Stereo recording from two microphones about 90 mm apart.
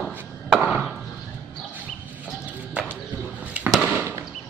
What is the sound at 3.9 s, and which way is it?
Fireworks, 25° right (ahead or behind).